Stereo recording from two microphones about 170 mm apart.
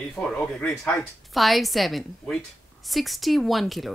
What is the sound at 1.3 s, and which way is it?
A woman's voice, centre (ahead or behind).